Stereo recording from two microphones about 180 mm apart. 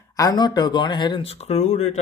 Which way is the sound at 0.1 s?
20° left (ahead or behind).